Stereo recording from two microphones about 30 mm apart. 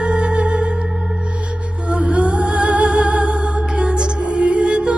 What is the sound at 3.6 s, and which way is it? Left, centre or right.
Music, right.